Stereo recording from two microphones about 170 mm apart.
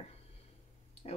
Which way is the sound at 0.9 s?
35° left (ahead or behind).